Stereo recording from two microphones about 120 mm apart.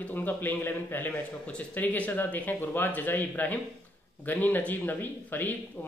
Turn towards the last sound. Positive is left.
turn(degrees=15)  # may be behind; listen again after turning